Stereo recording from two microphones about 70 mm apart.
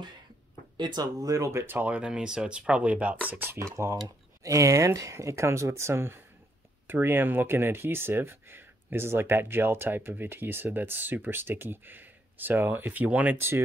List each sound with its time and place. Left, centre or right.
0.7 s speech: right
1.5 s speech: right
1.8 s speech: centre
3.5 s speech: right
4.4 s speech: right